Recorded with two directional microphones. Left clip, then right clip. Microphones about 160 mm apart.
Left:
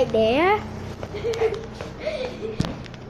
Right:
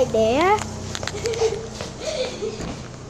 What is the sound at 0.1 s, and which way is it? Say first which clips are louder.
Speech: right 1 dB; centre (ahead or behind).